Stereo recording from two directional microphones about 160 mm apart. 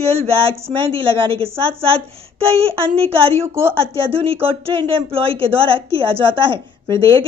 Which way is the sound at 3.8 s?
35° right (ahead or behind).